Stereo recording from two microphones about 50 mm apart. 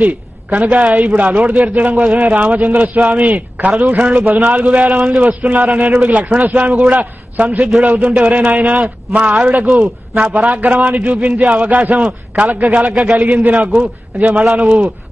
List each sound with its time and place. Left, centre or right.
0.0 s a man's voice: right
4.0 s a man's voice: centre
4.6 s a man's voice: right
9.4 s a man's voice: right
12.9 s a man's voice: centre
13.2 s a man's voice: right